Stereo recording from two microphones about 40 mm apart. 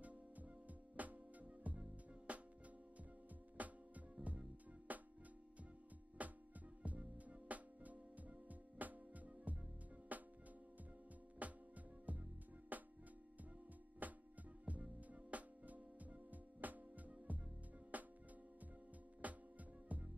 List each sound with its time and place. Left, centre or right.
0.0 s music: right
3.5 s music: right
6.2 s music: right
11.4 s music: right
14.0 s music: right
19.2 s music: right